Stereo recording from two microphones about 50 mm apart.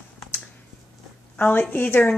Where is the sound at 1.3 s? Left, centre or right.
Left.